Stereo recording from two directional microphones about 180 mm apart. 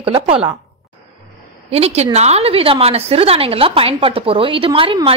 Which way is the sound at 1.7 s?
35° right (ahead or behind).